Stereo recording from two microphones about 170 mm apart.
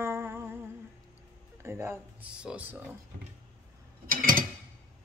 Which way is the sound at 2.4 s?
10° right (ahead or behind).